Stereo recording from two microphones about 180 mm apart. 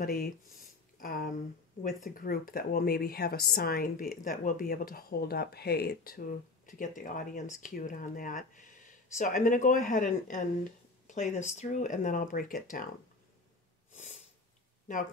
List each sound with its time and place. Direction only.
0.0 s speech: 55° left (ahead or behind)
13.9 s sniff: 40° left (ahead or behind)